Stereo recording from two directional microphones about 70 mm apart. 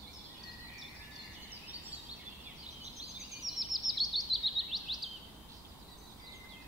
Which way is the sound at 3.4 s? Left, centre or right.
Centre.